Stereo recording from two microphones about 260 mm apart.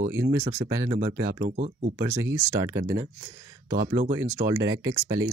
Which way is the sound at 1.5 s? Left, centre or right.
Right.